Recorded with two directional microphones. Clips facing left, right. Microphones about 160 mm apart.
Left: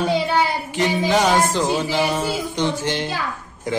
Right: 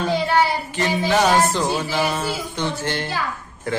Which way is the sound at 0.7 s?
15° left (ahead or behind).